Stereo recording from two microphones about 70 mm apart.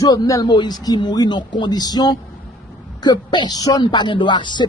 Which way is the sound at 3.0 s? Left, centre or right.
Left.